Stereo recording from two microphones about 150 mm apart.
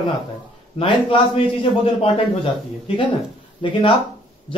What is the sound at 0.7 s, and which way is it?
Speech, 35° left (ahead or behind).